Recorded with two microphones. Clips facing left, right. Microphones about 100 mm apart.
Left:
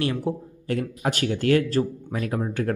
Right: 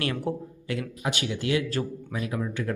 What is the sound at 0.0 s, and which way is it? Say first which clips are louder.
Speech: left 3 dB; 25° left (ahead or behind).